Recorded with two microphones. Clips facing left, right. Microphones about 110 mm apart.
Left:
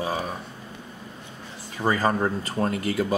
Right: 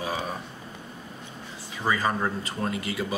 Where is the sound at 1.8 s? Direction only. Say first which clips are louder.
Left 3 dB; 40° left (ahead or behind).